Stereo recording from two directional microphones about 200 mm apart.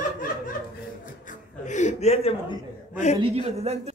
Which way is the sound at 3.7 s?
30° right (ahead or behind).